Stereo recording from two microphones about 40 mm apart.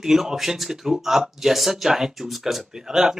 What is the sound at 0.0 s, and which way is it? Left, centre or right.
Speech, centre.